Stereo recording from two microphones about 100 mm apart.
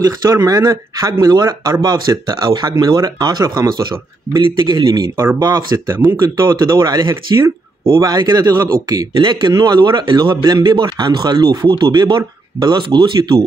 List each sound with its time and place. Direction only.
0.0 s a man's voice: 40° right (ahead or behind)
4.6 s a man's voice: 55° right (ahead or behind)
9.2 s a man's voice: 50° right (ahead or behind)